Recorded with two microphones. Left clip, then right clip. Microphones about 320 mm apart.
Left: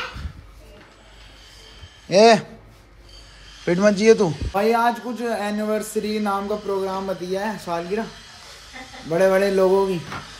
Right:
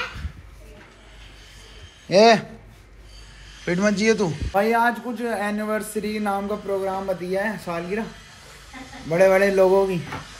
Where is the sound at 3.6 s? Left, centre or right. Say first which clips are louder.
Left 4 dB; centre.